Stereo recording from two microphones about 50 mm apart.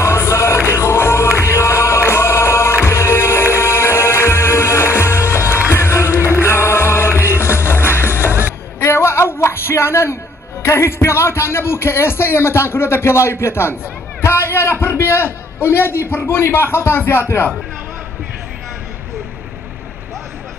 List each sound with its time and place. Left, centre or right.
0.0 s music: left
10.6 s a man's voice: left